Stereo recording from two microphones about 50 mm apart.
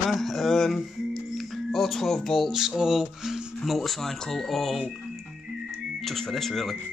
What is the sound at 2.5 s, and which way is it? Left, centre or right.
Speech, centre.